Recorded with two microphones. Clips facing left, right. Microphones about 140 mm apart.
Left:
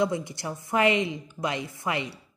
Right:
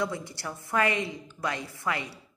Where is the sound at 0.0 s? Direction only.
20° left (ahead or behind).